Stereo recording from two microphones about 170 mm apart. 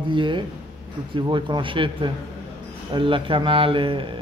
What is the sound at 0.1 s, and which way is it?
Speech, 30° right (ahead or behind).